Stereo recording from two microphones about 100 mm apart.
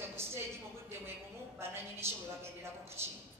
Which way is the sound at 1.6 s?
25° right (ahead or behind).